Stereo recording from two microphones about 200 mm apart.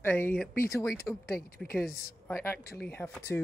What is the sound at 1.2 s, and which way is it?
Speech, 50° left (ahead or behind).